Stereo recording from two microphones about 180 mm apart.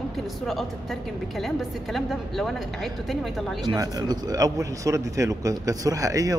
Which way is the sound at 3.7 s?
20° right (ahead or behind).